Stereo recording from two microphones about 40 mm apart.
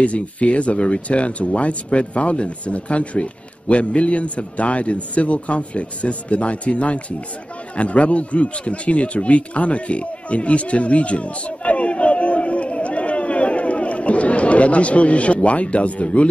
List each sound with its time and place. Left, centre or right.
0.0 s speech: left